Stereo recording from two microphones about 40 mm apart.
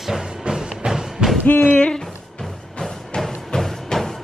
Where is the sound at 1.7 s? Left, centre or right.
Left.